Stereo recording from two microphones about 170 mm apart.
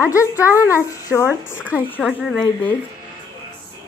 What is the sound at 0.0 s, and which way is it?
A child's voice, 15° left (ahead or behind).